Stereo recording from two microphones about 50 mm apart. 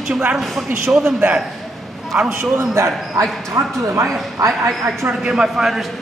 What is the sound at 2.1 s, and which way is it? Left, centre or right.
Speech, right.